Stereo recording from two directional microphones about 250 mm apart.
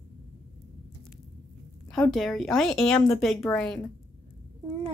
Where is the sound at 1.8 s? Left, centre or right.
Centre.